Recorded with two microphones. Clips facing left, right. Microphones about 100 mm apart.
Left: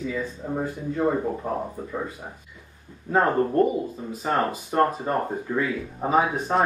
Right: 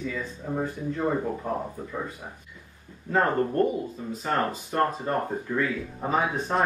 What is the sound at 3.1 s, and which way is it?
Speech, 15° left (ahead or behind).